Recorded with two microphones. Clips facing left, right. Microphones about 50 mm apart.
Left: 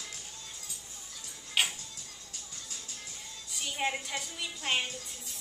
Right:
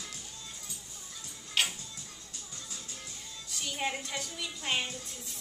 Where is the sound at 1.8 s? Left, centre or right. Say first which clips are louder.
Right 1 dB; right.